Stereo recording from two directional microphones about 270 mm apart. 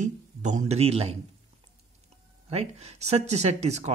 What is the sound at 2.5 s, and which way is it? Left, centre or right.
Speech, right.